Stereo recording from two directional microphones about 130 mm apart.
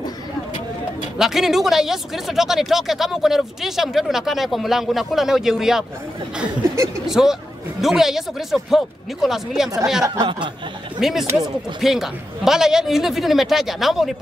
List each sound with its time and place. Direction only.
1.1 s speech: 5° right (ahead or behind)
7.1 s speech: 5° right (ahead or behind)
10.0 s speech: 35° right (ahead or behind)
11.0 s speech: centre (ahead or behind)